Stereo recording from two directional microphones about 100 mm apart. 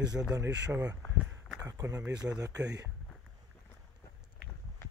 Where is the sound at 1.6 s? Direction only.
35° right (ahead or behind).